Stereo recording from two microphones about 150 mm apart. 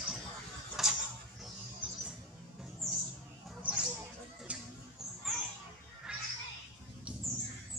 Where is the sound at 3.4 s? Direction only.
5° right (ahead or behind).